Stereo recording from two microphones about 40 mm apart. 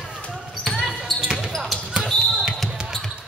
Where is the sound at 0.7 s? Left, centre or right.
Centre.